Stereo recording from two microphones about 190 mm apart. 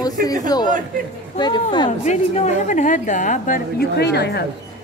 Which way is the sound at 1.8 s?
40° left (ahead or behind).